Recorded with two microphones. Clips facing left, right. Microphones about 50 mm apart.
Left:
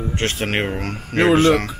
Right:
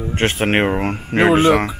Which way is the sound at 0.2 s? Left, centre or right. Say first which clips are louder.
Right 7 dB; right.